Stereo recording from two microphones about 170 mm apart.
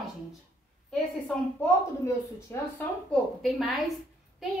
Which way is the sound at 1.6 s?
15° left (ahead or behind).